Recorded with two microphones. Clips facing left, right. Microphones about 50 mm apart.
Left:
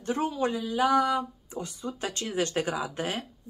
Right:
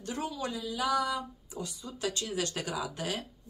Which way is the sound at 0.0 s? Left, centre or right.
Left.